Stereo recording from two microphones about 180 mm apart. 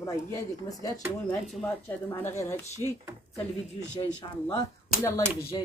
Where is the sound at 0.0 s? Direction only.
20° left (ahead or behind).